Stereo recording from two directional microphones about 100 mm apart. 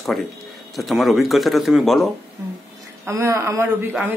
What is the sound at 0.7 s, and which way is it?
Speech, centre (ahead or behind).